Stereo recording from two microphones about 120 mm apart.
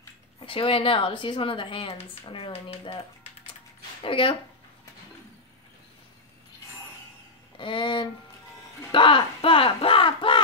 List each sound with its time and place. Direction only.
0.5 s a woman's voice: 50° left (ahead or behind)
4.0 s a woman's voice: 45° left (ahead or behind)
7.5 s speech: 45° left (ahead or behind)